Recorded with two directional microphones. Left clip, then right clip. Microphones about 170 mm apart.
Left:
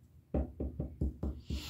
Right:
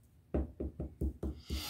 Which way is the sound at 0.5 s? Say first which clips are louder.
Left 1 dB; 35° right (ahead or behind).